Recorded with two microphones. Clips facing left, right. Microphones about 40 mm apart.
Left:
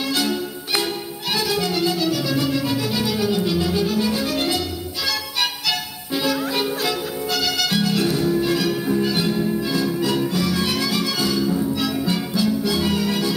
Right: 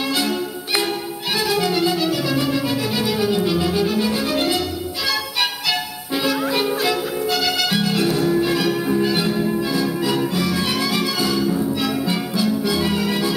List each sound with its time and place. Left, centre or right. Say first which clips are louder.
0.1 s music: right 1 dB; centre